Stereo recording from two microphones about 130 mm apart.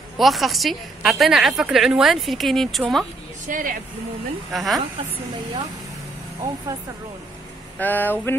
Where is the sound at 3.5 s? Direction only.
90° right.